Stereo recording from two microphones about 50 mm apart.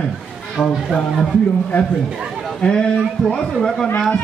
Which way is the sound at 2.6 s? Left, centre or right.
Left.